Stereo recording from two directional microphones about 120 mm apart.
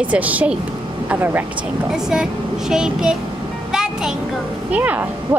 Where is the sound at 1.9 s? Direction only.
5° right (ahead or behind).